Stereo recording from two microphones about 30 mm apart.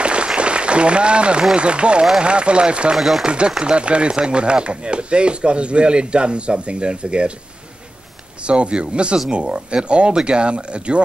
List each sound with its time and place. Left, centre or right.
0.0 s applause: right
0.4 s speech: right
3.0 s speech: centre
3.3 s speech: right
8.5 s speech: right